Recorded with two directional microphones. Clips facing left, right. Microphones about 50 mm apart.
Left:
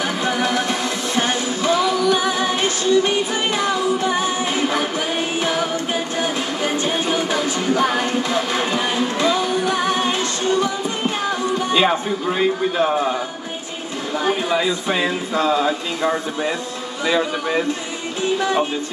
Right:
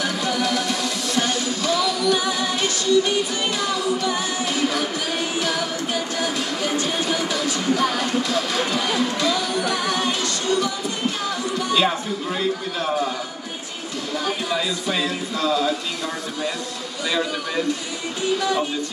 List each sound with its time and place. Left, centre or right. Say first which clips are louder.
0.0 s music: left 3 dB; left
11.2 s speech: left 4 dB; left
14.2 s speech: left 6 dB; left